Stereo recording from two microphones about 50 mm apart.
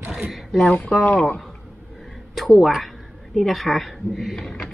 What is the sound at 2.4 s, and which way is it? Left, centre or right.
A woman's voice, centre.